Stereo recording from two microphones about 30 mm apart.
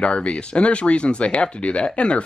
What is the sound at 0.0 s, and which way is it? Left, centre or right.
Speech, left.